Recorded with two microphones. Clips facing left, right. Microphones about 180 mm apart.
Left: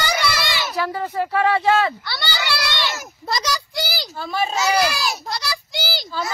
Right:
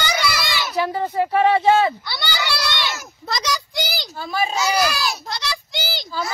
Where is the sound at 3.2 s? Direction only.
5° left (ahead or behind).